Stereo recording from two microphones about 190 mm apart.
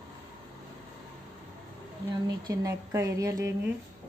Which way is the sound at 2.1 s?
20° right (ahead or behind).